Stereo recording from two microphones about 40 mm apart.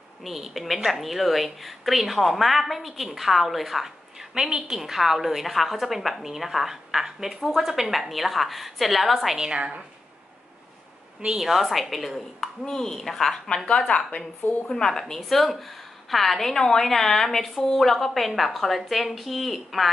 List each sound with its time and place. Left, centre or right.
0.2 s a woman's voice: centre
9.4 s a woman's voice: right
11.3 s a woman's voice: centre
12.6 s speech: centre
13.0 s a woman's voice: centre
13.8 s speech: left
14.7 s a woman's voice: centre